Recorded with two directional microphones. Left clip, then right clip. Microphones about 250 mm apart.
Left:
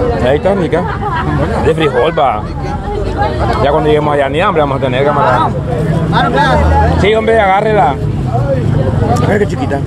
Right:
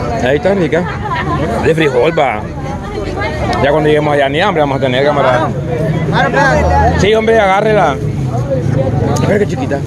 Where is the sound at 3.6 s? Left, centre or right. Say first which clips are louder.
Even; centre.